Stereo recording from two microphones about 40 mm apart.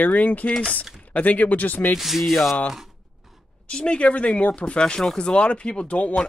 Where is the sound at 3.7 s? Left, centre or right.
Left.